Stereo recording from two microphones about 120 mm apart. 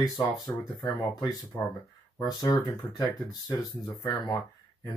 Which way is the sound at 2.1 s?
35° left (ahead or behind).